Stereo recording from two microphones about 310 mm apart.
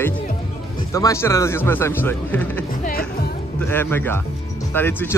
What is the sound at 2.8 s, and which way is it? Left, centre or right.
Music, left.